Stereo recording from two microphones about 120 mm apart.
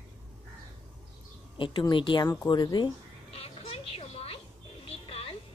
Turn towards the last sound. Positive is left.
turn(degrees=55)  # may be behind; listen again after turning